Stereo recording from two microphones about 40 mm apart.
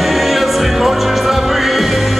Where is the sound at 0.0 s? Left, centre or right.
Centre.